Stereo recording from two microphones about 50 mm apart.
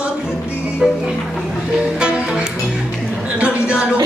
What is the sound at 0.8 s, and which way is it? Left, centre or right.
Speech, centre.